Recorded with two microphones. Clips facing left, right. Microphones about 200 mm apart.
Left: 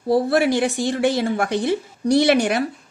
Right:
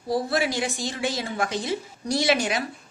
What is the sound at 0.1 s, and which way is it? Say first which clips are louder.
A woman's voice: left 7 dB; 60° left (ahead or behind).